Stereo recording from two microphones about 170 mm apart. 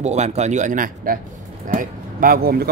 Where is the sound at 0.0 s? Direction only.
40° right (ahead or behind).